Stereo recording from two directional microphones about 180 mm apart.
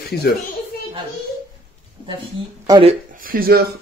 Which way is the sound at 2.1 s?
25° right (ahead or behind).